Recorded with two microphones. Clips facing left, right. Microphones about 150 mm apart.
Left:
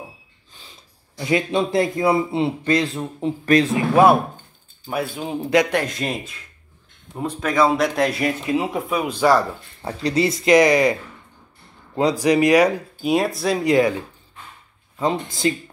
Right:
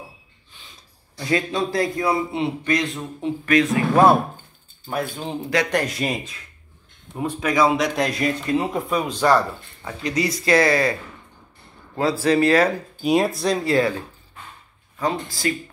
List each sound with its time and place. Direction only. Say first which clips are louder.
1.1 s speech: left 3 dB; 20° left (ahead or behind)
3.7 s speech: even; 10° left (ahead or behind)
9.8 s speech: left 4 dB; 30° left (ahead or behind); by 12.8 s 15° left (ahead or behind)
13.0 s speech: right 1 dB; centre (ahead or behind)
13.6 s speech: left 4 dB; 15° left (ahead or behind)
15.0 s speech: left 2 dB; 20° left (ahead or behind)